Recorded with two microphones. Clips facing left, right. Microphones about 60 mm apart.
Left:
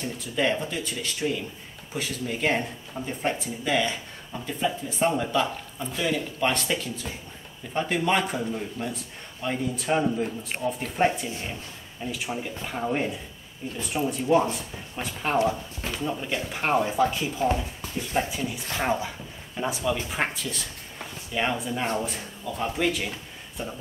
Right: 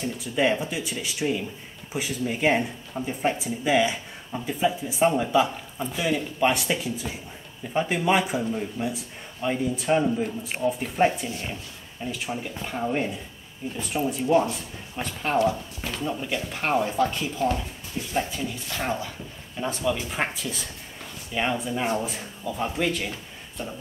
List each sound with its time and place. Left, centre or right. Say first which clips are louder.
0.2 s speech: right 2 dB; centre
15.3 s speech: right 2 dB; centre
15.9 s speech: even; centre